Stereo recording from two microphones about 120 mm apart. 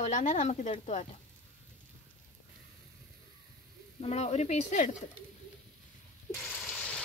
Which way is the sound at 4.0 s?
60° left (ahead or behind).